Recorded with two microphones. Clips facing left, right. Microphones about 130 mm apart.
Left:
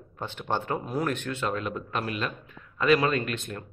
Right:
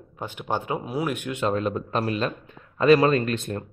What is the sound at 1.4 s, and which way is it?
A man's voice, 30° right (ahead or behind).